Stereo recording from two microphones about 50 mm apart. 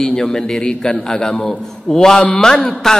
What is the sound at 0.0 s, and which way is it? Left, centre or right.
A man's voice, centre.